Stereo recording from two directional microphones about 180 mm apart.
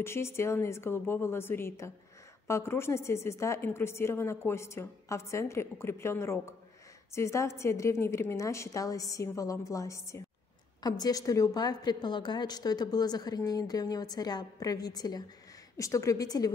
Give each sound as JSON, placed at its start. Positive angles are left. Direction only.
{"t": 0.0, "sound": "a woman's voice", "side_deg": 15}